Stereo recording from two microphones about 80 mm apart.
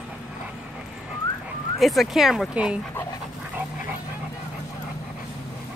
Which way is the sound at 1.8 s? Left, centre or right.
Centre.